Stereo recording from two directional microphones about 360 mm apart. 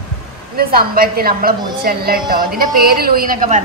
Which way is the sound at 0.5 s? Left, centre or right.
Right.